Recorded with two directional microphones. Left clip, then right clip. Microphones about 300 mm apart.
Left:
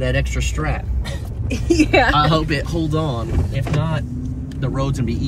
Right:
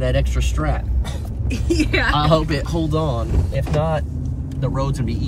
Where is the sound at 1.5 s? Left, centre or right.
Centre.